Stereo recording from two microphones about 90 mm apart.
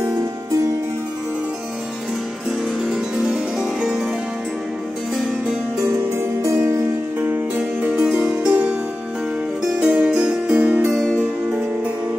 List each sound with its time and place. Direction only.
2.9 s music: 5° right (ahead or behind)
6.1 s music: 35° right (ahead or behind)
7.2 s music: 20° right (ahead or behind)
9.8 s music: 15° right (ahead or behind)